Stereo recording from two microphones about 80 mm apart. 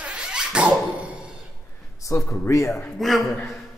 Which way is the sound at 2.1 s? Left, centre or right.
Left.